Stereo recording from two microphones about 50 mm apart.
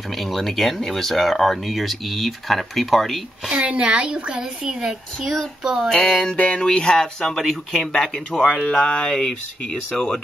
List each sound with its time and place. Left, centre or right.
0.2 s speech: centre
3.4 s a woman's voice: right
5.2 s speech: centre
5.9 s speech: centre
6.3 s speech: left; by 7.9 s centre
7.9 s speech: centre